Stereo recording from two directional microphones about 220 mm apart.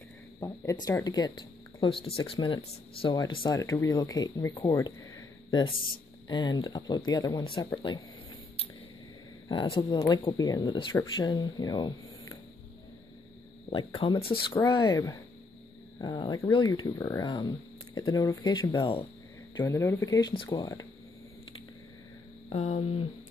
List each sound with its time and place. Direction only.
0.4 s speech: 15° left (ahead or behind)
9.5 s speech: 20° left (ahead or behind)
13.7 s speech: 25° left (ahead or behind)
22.5 s speech: 30° left (ahead or behind)